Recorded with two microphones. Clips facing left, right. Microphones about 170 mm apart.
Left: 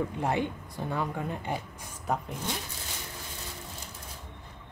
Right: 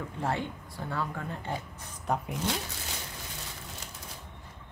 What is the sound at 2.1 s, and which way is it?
Speech, centre (ahead or behind).